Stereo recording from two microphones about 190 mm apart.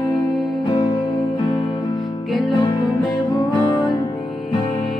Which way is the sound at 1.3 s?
25° left (ahead or behind).